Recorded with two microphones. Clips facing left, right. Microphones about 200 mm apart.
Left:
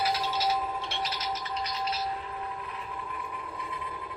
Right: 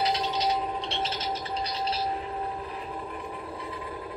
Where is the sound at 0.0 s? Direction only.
20° right (ahead or behind).